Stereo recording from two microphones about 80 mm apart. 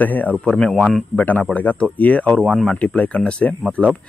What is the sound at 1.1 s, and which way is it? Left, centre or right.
Speech, centre.